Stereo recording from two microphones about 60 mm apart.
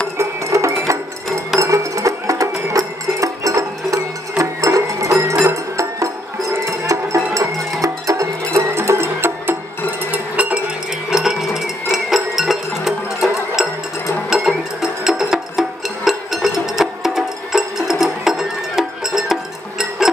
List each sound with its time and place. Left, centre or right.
0.2 s music: right
11.1 s music: centre